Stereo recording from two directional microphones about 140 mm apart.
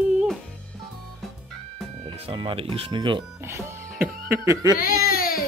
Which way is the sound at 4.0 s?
15° right (ahead or behind).